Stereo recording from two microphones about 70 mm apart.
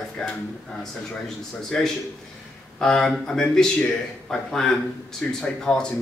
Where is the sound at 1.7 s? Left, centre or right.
Centre.